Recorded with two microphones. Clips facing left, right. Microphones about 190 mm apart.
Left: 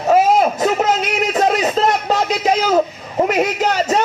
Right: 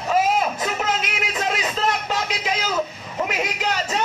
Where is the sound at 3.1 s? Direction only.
40° left (ahead or behind).